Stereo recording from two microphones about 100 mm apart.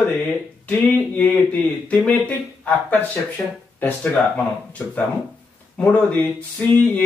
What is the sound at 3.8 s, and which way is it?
Speech, 15° left (ahead or behind).